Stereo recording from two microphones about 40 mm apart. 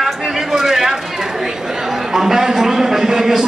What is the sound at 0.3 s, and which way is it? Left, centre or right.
Chatter, centre.